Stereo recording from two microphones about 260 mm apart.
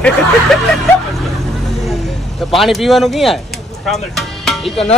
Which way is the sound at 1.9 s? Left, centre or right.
Centre.